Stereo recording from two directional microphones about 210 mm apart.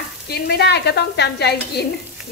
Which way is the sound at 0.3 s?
50° left (ahead or behind).